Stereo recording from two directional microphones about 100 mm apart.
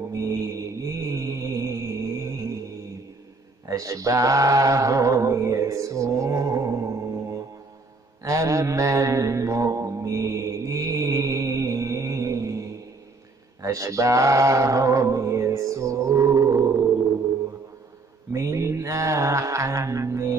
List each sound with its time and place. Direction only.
0.1 s mantra: 35° right (ahead or behind)
3.6 s a sound: 35° right (ahead or behind)
8.2 s mantra: 35° right (ahead or behind)
13.6 s music: 35° right (ahead or behind)
18.3 s mantra: 30° right (ahead or behind)